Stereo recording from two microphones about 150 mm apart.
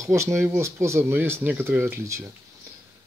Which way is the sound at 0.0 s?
20° right (ahead or behind).